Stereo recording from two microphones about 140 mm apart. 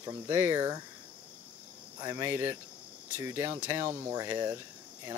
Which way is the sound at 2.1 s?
15° right (ahead or behind).